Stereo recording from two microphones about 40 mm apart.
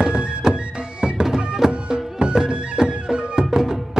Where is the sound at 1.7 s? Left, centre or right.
Right.